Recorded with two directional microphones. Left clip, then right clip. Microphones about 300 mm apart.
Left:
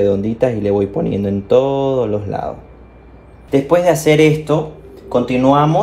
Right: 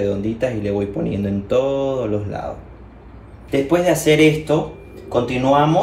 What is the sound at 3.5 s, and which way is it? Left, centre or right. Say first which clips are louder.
Speech: left 4 dB; left.